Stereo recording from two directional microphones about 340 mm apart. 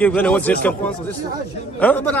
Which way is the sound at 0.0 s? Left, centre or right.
Centre.